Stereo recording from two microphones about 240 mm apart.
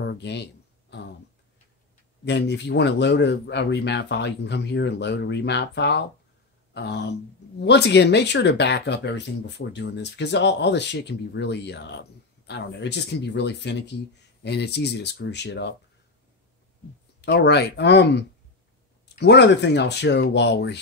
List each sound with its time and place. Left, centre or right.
0.1 s speech: left
2.2 s speech: left
17.2 s speech: left